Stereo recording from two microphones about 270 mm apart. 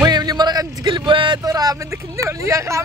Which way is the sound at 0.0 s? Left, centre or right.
Centre.